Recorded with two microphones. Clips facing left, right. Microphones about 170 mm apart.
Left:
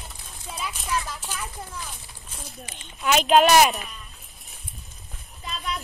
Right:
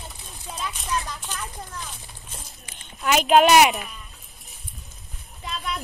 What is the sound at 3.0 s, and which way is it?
Speech, 5° right (ahead or behind).